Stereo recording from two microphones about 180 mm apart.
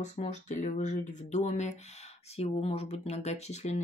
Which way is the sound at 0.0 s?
40° left (ahead or behind).